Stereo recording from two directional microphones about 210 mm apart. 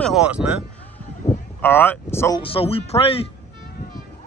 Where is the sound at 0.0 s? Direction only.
5° right (ahead or behind).